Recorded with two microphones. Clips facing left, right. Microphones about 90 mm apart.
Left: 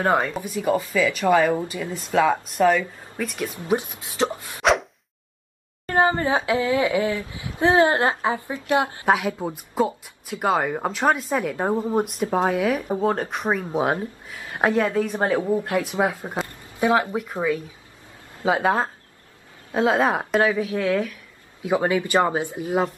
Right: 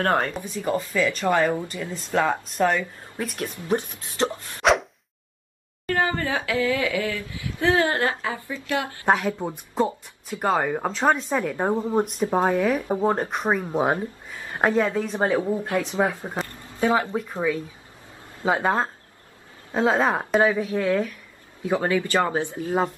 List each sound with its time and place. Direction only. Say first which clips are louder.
0.0 s a woman's voice: left 2 dB; 5° left (ahead or behind)
3.6 s a woman's voice: left 1 dB; 10° left (ahead or behind)
5.9 s speech: left 4 dB; 20° left (ahead or behind)
9.0 s a woman's voice: left 1 dB; 10° left (ahead or behind)
12.8 s speech: even; 15° right (ahead or behind)
13.3 s a woman's voice: even; 5° right (ahead or behind)
19.9 s a woman's voice: left 1 dB; 10° left (ahead or behind)
20.2 s a woman's voice: even; centre (ahead or behind)
21.6 s a woman's voice: left 1 dB; 15° left (ahead or behind)